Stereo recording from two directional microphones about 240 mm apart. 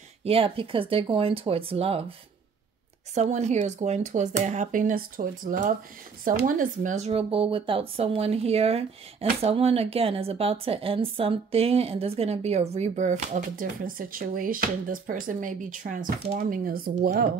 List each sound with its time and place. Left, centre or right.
0.2 s speech: right
3.2 s speech: right